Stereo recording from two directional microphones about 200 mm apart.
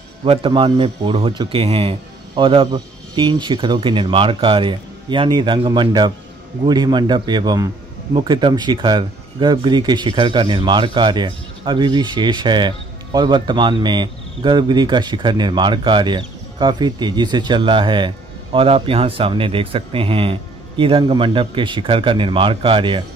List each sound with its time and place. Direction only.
0.2 s a man's voice: 25° right (ahead or behind)